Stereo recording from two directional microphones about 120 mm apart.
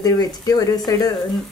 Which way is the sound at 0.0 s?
30° left (ahead or behind).